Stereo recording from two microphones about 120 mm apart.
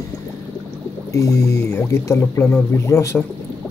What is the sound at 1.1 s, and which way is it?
Speech, 25° left (ahead or behind).